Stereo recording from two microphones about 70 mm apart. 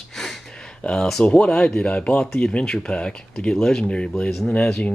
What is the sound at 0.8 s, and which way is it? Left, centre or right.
Speech, centre.